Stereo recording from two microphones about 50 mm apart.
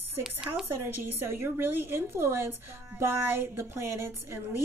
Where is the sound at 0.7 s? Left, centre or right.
Right.